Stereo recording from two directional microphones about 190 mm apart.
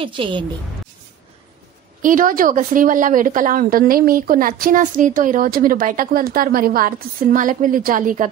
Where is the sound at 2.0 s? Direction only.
45° right (ahead or behind).